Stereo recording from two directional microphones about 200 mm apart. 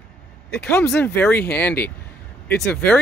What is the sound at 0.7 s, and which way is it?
Speech, 10° left (ahead or behind).